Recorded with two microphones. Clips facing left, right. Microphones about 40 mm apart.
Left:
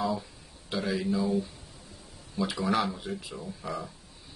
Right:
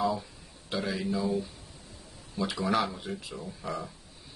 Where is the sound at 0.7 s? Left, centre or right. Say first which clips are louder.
Left 2 dB; centre.